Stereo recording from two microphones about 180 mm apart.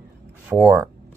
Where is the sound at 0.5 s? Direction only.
5° right (ahead or behind).